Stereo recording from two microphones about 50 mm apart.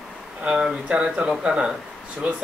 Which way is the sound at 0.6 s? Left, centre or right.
Centre.